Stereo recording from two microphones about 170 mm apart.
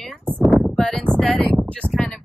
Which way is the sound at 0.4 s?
5° left (ahead or behind).